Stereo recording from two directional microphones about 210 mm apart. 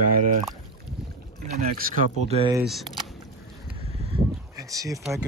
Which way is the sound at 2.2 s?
30° right (ahead or behind).